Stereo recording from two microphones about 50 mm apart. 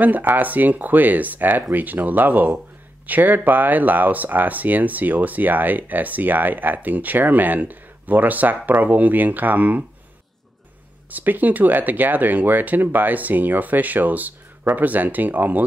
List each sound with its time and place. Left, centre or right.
0.0 s speech: right
11.1 s speech: right